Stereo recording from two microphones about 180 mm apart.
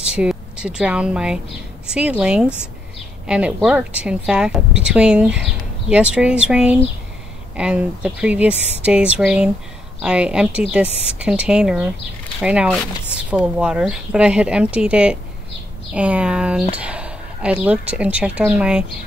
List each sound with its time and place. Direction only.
0.0 s a woman's voice: 5° right (ahead or behind)